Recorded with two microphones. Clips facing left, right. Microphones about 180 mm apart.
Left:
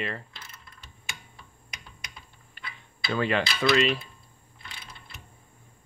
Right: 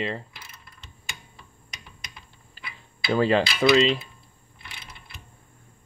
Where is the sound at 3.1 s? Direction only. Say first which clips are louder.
Right 5 dB; 30° right (ahead or behind).